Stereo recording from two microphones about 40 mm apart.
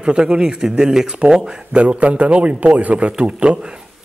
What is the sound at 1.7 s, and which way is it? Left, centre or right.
A man's voice, right.